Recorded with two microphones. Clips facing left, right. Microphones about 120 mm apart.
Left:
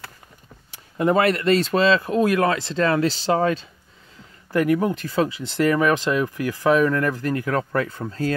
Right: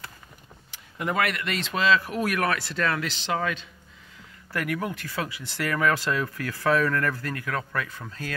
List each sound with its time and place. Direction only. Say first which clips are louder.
0.9 s speech: left 8 dB; 30° left (ahead or behind)